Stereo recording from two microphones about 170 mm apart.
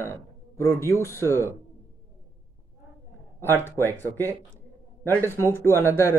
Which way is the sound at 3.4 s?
15° left (ahead or behind).